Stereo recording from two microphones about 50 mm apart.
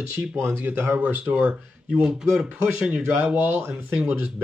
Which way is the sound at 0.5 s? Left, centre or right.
Right.